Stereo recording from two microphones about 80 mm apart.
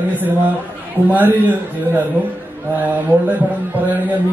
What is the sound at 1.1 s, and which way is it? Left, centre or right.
Speech, right.